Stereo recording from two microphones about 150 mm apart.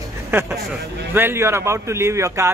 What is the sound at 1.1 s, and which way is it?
A man's voice, 15° right (ahead or behind).